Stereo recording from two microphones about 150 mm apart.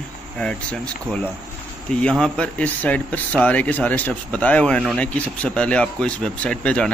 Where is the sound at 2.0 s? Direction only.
5° left (ahead or behind).